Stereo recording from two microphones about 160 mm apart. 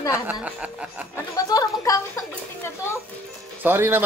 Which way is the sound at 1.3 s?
20° left (ahead or behind).